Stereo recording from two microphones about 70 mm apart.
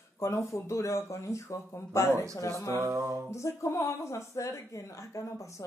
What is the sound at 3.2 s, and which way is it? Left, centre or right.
Speech, left.